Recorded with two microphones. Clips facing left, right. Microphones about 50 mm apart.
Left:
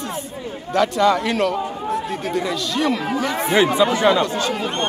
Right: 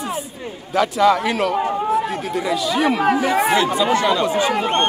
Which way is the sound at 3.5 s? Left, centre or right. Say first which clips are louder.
Left 2 dB; left.